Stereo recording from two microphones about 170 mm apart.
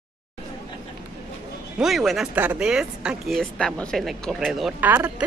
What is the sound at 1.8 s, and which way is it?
Speech, centre (ahead or behind).